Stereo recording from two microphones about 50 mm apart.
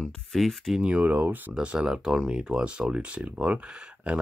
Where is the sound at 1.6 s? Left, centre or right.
Right.